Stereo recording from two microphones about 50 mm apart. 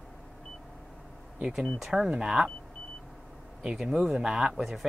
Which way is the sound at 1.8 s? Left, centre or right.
Centre.